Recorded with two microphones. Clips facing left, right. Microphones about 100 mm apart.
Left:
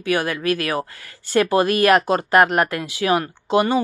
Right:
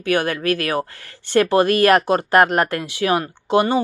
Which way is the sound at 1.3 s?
30° right (ahead or behind).